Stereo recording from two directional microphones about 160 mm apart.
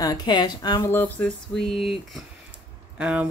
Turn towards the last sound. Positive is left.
turn(degrees=-5)  # may be behind; listen again after turning